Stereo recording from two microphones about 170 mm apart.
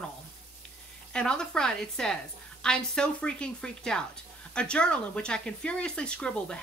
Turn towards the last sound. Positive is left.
turn(degrees=5)  # may be behind; listen again after turning